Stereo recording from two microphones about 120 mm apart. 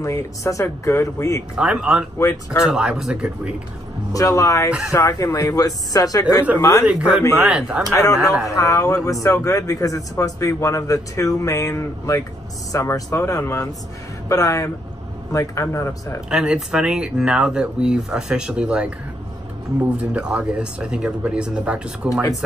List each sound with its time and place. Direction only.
0.0 s speech: 25° left (ahead or behind)
1.6 s speech: 10° right (ahead or behind)
2.1 s speech: 25° left (ahead or behind)
2.6 s speech: 5° right (ahead or behind)
4.1 s speech: 30° left (ahead or behind)
4.6 s speech: 5° right (ahead or behind)
4.9 s speech: 25° left (ahead or behind)
6.9 s speech: 10° right (ahead or behind)
7.9 s speech: 30° left (ahead or behind)
16.3 s speech: 5° right (ahead or behind)